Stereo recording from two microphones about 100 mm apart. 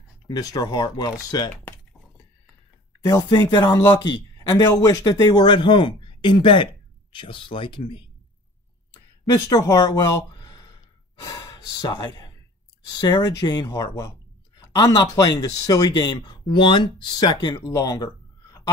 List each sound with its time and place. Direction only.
0.3 s speech: 40° left (ahead or behind)
1.5 s typing: 20° left (ahead or behind)
3.0 s a man's voice: 35° left (ahead or behind); by 8.0 s 60° left (ahead or behind)
9.2 s speech: 40° left (ahead or behind)
10.5 s sigh: 45° left (ahead or behind)
13.0 s a man's voice: 40° left (ahead or behind)
17.6 s speech: 40° left (ahead or behind)